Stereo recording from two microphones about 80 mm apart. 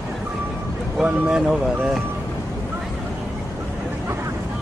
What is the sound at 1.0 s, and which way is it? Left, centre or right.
Speech, centre.